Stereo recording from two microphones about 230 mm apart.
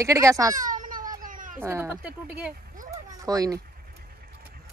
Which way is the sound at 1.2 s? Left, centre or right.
Right.